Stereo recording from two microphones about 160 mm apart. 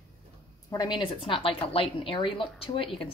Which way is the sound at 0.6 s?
25° left (ahead or behind).